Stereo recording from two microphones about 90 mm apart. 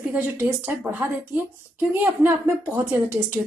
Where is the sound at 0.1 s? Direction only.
20° right (ahead or behind).